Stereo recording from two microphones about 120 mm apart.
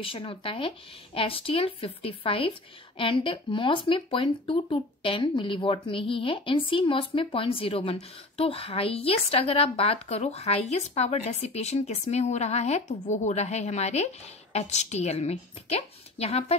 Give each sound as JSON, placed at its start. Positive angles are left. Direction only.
{"t": 0.0, "sound": "speech", "side_deg": 50}